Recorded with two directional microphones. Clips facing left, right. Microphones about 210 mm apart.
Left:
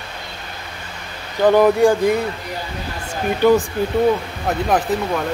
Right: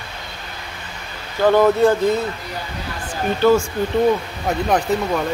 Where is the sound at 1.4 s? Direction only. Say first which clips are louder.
Left 1 dB; 15° left (ahead or behind).